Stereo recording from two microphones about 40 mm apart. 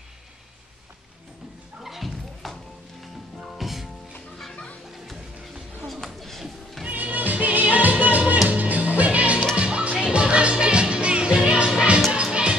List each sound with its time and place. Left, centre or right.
1.8 s a sound: centre
3.5 s music: centre
6.9 s music: right